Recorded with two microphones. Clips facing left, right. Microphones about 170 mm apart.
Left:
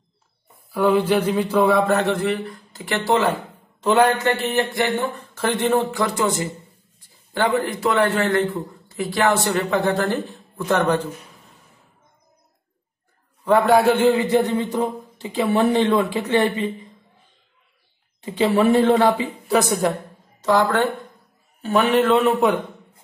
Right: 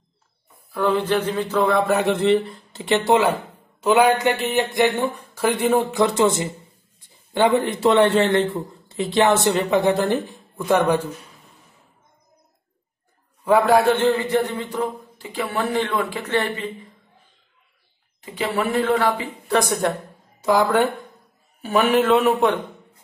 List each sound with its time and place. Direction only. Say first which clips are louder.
0.7 s speech: left 3 dB; 10° left (ahead or behind)
1.8 s a man's voice: left 1 dB; 5° right (ahead or behind)
2.0 s a man's voice: right 4 dB; 20° right (ahead or behind)
13.4 s a man's voice: even; centre (ahead or behind)
13.9 s speech: left 2 dB; 10° left (ahead or behind)
18.2 s speech: left 6 dB; 30° left (ahead or behind)
19.4 s a man's voice: left 1 dB; 5° left (ahead or behind)
20.3 s a woman's voice: right 1 dB; 10° right (ahead or behind)